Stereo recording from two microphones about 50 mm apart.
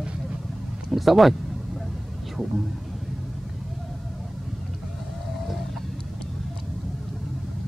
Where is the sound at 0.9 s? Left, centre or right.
Centre.